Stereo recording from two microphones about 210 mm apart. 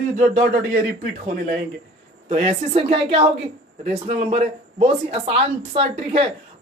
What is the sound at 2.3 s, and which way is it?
A man's voice, 30° right (ahead or behind).